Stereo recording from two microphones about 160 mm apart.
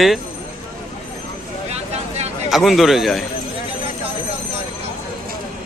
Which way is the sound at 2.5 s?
Centre (ahead or behind).